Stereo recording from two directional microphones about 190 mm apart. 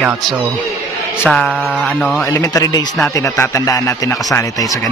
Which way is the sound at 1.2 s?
5° left (ahead or behind).